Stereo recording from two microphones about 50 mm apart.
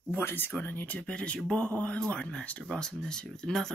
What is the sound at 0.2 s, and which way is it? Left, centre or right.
Speech, left.